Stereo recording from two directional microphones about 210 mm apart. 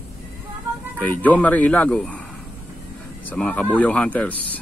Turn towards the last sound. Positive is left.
turn(degrees=5)  # may be behind; listen again after turning